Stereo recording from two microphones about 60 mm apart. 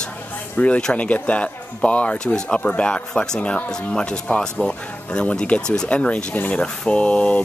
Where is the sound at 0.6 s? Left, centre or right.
Centre.